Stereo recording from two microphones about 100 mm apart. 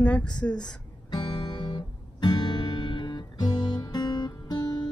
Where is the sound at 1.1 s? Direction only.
45° left (ahead or behind).